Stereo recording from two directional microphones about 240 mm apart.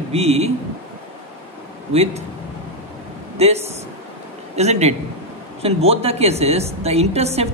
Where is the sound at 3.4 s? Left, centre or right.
Right.